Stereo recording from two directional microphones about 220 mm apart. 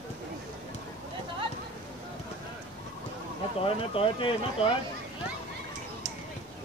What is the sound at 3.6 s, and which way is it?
Speech, 25° left (ahead or behind).